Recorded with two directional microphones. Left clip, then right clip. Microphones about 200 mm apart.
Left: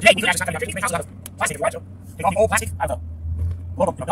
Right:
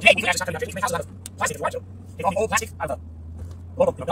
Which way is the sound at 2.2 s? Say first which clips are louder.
Left 4 dB; 15° left (ahead or behind).